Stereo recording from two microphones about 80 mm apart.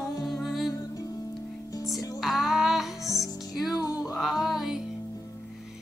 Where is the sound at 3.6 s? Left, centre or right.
Left.